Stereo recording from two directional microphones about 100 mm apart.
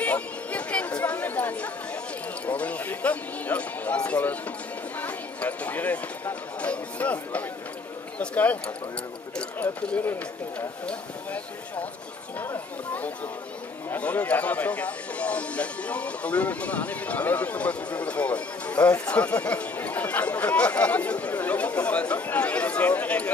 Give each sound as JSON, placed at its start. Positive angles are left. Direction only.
{"t": 0.0, "sound": "chatter", "side_deg": 15}
{"t": 2.4, "sound": "speech", "side_deg": 15}
{"t": 9.6, "sound": "speech", "side_deg": 15}